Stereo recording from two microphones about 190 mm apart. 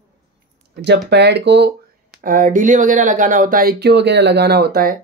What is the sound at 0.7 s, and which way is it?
Speech, 60° right (ahead or behind).